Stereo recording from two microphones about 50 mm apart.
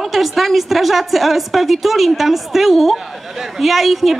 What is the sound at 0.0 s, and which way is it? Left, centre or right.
Speech, centre.